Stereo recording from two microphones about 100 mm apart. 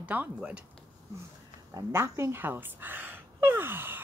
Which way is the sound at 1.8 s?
30° right (ahead or behind).